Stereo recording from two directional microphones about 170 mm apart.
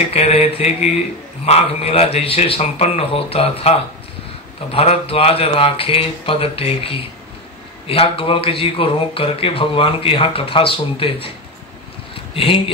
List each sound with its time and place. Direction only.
0.1 s speech: 35° left (ahead or behind)
12.4 s speech: 30° left (ahead or behind)